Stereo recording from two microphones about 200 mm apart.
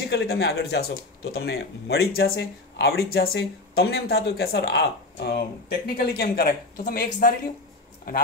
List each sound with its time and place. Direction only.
0.0 s speech: 55° left (ahead or behind)